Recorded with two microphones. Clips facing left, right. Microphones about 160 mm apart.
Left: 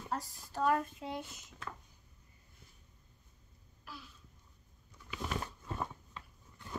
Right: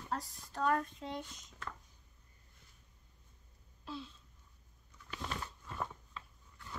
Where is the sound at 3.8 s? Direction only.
25° right (ahead or behind).